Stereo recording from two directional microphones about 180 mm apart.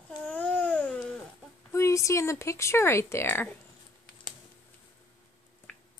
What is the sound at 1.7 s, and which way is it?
Speech, 15° left (ahead or behind).